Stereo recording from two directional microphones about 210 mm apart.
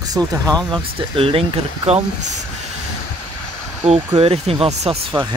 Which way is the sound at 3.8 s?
25° right (ahead or behind).